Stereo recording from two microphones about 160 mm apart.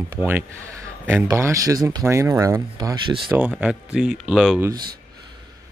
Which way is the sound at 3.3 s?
10° right (ahead or behind).